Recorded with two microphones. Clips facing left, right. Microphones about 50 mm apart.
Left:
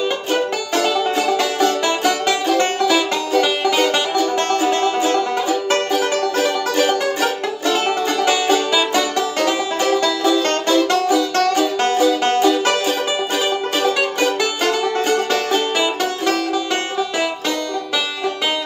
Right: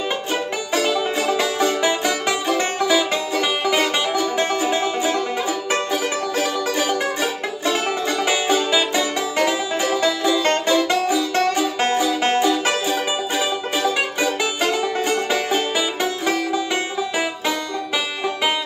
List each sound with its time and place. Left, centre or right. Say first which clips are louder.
1.2 s music: left 1 dB; right
6.8 s music: left 6 dB; left
8.5 s music: left 2 dB; centre